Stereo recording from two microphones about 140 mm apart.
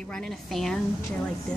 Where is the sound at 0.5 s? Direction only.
5° left (ahead or behind).